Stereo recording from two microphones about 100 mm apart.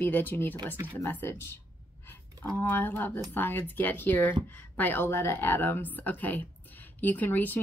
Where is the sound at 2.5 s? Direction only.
20° left (ahead or behind).